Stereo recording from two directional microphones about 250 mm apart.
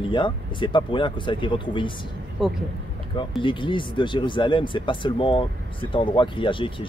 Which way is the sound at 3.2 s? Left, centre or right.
Centre.